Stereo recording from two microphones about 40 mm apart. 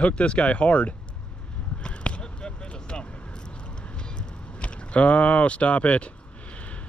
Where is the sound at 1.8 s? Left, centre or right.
Left.